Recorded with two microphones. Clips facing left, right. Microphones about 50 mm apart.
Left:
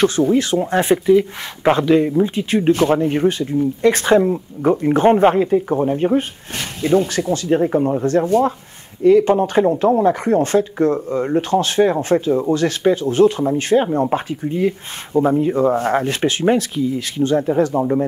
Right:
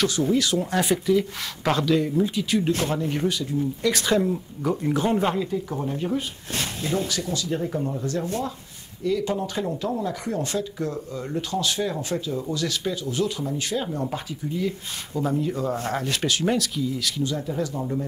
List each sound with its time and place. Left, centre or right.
0.0 s speech: left